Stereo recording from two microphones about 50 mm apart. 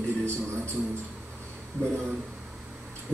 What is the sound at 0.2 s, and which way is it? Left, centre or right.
Speech, right.